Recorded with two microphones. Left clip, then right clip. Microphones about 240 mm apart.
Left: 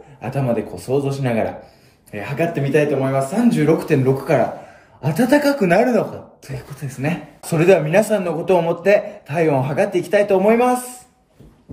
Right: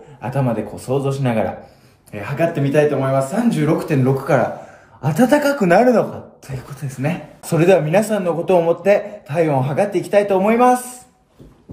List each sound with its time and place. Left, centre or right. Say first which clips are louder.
0.2 s speech: even; centre